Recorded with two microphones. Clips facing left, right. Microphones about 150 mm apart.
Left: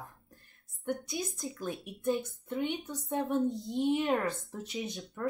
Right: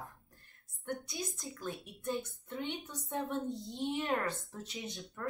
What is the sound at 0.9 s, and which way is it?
A woman's voice, 20° left (ahead or behind).